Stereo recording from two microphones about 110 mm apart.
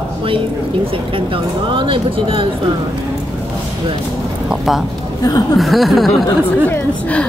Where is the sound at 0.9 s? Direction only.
50° right (ahead or behind).